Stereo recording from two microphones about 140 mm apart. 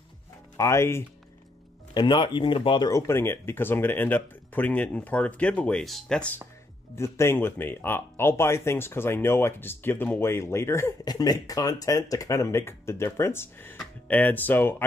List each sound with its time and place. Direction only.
0.6 s speech: 20° left (ahead or behind)
2.0 s speech: 35° left (ahead or behind)
2.9 s speech: 20° left (ahead or behind)
7.0 s speech: 20° left (ahead or behind)